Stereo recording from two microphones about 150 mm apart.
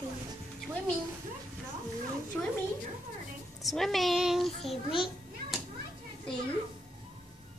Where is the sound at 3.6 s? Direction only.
Centre (ahead or behind).